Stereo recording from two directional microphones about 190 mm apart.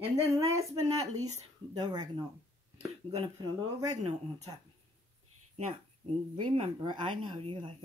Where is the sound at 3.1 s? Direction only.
25° right (ahead or behind).